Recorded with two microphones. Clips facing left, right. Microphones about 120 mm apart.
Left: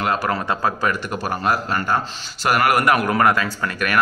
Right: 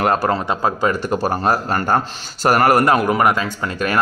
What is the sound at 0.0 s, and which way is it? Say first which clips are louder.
Speech: right 5 dB; 40° right (ahead or behind).